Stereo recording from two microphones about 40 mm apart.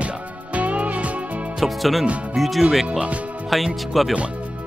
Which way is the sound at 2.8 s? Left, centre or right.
Right.